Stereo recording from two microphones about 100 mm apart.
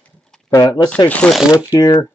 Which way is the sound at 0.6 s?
45° left (ahead or behind).